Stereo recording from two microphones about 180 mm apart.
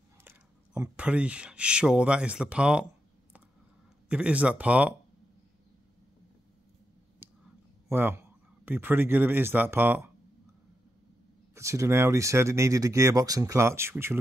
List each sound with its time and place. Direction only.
0.2 s speech: 10° right (ahead or behind)
4.1 s speech: 5° right (ahead or behind)
7.2 s a sound: 10° right (ahead or behind)
7.9 s speech: 10° right (ahead or behind)
11.5 s speech: 15° right (ahead or behind)